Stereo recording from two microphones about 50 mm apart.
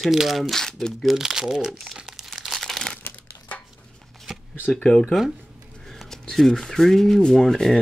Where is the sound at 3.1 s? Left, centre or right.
Left.